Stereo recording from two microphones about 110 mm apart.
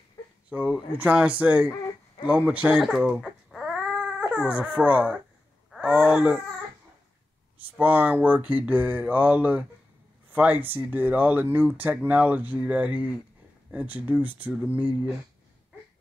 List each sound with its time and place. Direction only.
0.5 s speech: 15° right (ahead or behind)
7.5 s speech: 15° right (ahead or behind)